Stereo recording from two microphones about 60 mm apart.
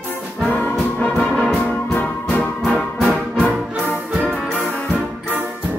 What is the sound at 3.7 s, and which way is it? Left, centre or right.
Music, right.